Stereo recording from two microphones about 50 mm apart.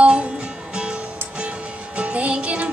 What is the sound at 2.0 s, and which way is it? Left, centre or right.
Music, right.